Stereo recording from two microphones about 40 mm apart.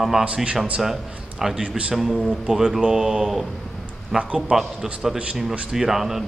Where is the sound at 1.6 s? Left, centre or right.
Right.